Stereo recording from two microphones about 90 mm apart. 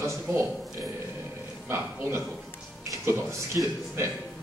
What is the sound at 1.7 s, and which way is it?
Speech, 25° right (ahead or behind).